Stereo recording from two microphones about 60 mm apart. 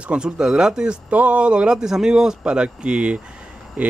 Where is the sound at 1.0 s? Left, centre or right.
Right.